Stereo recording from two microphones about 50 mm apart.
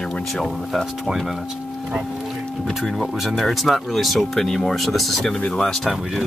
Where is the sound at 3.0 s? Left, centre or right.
Centre.